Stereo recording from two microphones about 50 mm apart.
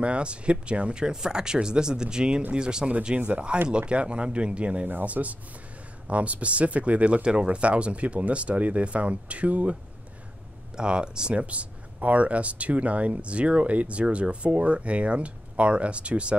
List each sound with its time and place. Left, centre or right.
0.0 s speech: right
4.8 s speech: right
10.8 s speech: centre